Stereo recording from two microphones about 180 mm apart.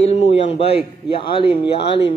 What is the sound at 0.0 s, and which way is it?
A man's voice, 35° left (ahead or behind).